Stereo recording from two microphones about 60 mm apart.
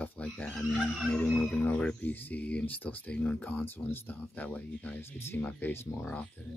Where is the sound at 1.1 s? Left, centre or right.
Left.